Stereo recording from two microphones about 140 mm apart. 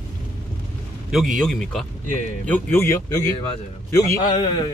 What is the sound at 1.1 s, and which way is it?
Speech, centre (ahead or behind).